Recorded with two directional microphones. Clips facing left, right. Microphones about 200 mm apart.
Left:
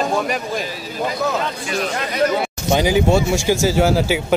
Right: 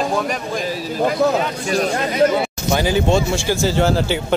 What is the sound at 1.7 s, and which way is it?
Speech, 40° right (ahead or behind).